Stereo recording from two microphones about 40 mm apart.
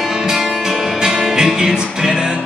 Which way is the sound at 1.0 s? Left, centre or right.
Centre.